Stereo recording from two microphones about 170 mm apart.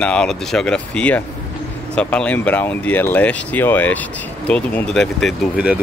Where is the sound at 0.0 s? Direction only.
5° left (ahead or behind).